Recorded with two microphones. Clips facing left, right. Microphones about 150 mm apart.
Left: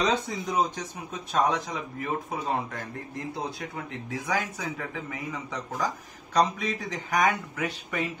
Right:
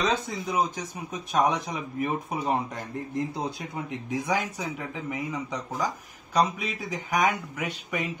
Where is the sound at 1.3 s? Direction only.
15° right (ahead or behind).